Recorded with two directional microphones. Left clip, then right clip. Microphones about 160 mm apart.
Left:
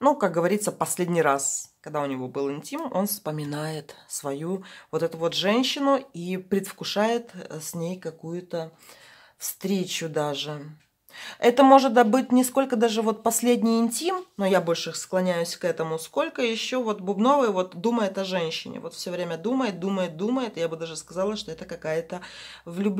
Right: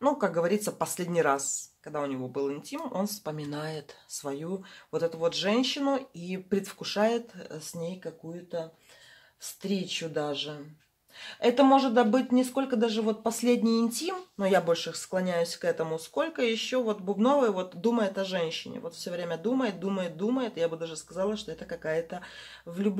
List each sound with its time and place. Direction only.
0.0 s a woman's voice: 30° left (ahead or behind)